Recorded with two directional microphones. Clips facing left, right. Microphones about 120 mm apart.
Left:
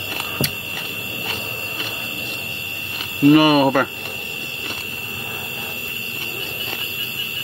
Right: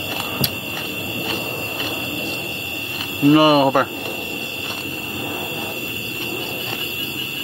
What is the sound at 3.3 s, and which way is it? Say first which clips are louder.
Speech: even; 30° right (ahead or behind).